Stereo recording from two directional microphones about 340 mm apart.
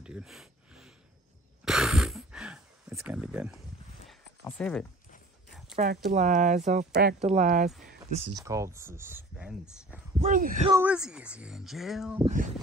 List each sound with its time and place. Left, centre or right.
0.0 s a sound: centre
6.0 s speech: right
7.8 s a sound: centre
8.4 s speech: centre
10.1 s speech: right
10.7 s speech: centre
12.3 s speech: right